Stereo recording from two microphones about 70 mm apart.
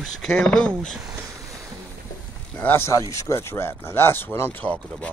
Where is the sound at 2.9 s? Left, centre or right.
Left; by 5.1 s centre.